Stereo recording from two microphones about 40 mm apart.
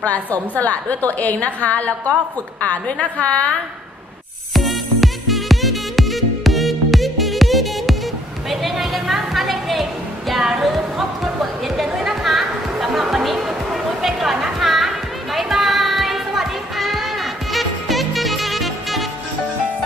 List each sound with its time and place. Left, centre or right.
0.0 s a woman's voice: left
4.6 s music: centre
10.6 s a sound: centre
11.6 s chatter: centre
12.2 s music: centre
14.0 s a sound: centre
14.6 s music: centre